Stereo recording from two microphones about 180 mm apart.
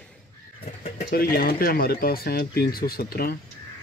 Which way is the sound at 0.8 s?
55° left (ahead or behind).